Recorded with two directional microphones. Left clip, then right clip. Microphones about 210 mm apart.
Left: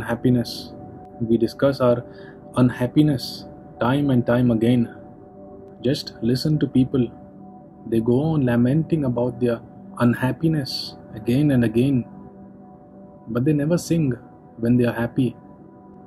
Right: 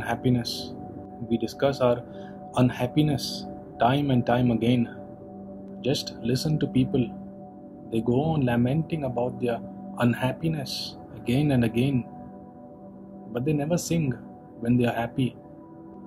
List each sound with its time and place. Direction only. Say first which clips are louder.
0.0 s speech: left 4 dB; 5° right (ahead or behind)
13.3 s speech: left 5 dB; 5° right (ahead or behind)